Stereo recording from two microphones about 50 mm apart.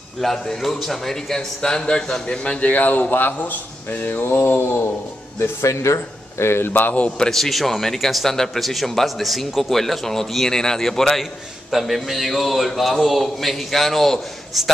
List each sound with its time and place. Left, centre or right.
0.2 s a man's voice: centre; by 3.5 s left
4.2 s mantra: left
5.6 s a man's voice: left
6.7 s a man's voice: left
7.2 s speech: centre